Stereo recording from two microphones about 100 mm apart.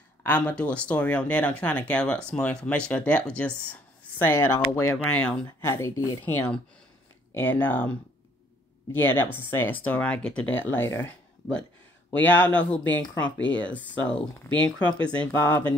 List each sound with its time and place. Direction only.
0.2 s speech: 15° left (ahead or behind)
5.6 s speech: 25° left (ahead or behind)
6.2 s speech: 15° left (ahead or behind)
8.9 s speech: 20° left (ahead or behind)
15.3 s speech: 30° left (ahead or behind)